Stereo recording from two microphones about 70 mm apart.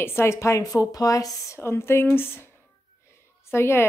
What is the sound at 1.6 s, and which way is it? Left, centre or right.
A woman's voice, left.